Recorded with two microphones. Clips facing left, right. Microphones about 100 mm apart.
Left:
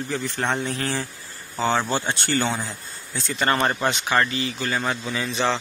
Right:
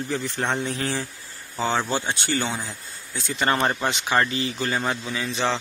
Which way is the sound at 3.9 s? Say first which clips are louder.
Left 1 dB; 20° right (ahead or behind).